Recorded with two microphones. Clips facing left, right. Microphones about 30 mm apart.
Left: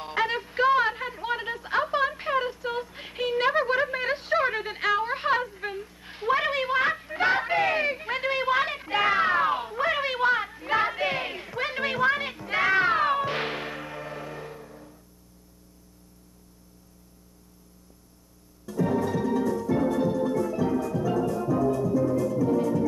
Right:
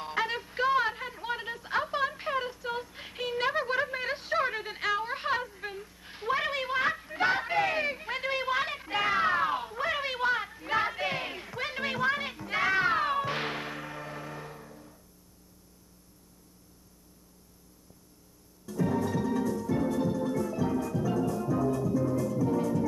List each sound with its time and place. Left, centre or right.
0.0 s music: left
18.8 s music: left